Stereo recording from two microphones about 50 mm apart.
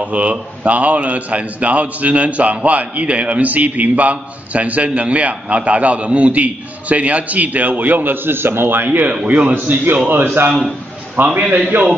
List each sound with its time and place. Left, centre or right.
0.0 s a man's voice: right